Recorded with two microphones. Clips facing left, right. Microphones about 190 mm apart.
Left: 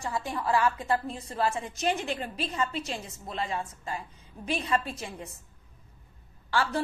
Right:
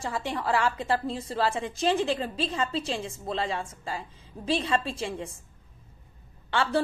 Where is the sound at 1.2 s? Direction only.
90° right.